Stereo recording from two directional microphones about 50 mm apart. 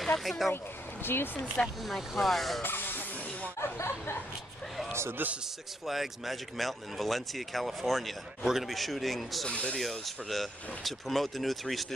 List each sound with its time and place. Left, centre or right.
0.0 s speech: centre
1.0 s speech: left
1.9 s speech: centre
2.6 s a sound: left
3.5 s speech: left
5.2 s a man's voice: right
5.9 s speech: centre
9.5 s speech: left
9.8 s speech: centre